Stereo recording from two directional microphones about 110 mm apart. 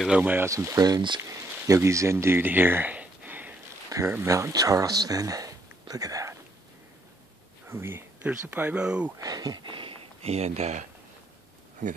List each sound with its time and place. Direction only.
0.0 s speech: 10° right (ahead or behind)
0.5 s speech: 30° right (ahead or behind)
1.7 s speech: 25° right (ahead or behind)
7.6 s speech: 20° right (ahead or behind)
9.2 s speech: 35° right (ahead or behind)
10.2 s speech: 75° right (ahead or behind)